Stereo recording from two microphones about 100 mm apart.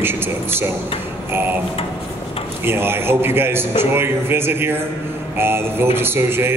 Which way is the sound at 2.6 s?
25° right (ahead or behind).